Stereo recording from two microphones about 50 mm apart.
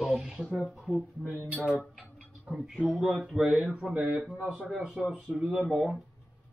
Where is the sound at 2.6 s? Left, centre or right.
Centre.